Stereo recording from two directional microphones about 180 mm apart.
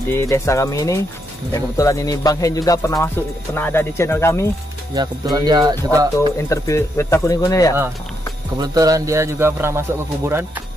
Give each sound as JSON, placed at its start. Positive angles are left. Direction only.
{"t": 0.1, "sound": "speech", "side_deg": 15}
{"t": 4.9, "sound": "speech", "side_deg": -25}
{"t": 6.1, "sound": "speech", "side_deg": 15}
{"t": 8.5, "sound": "speech", "side_deg": -20}